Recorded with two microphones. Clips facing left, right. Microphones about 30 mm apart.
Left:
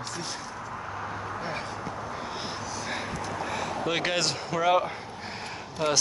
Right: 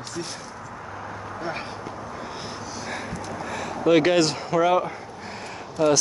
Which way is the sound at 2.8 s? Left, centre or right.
Centre.